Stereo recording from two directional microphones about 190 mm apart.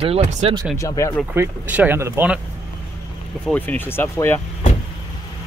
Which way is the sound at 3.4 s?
10° left (ahead or behind).